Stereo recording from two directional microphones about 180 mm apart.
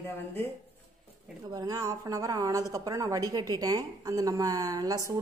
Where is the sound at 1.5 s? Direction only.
20° right (ahead or behind).